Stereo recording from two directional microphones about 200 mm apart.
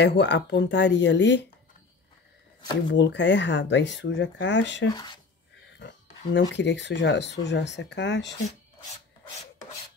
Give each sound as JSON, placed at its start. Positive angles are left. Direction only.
{"t": 0.0, "sound": "speech", "side_deg": 60}
{"t": 2.9, "sound": "speech", "side_deg": 60}
{"t": 4.9, "sound": "speech", "side_deg": 20}
{"t": 5.8, "sound": "a sound", "side_deg": 60}
{"t": 6.5, "sound": "speech", "side_deg": 60}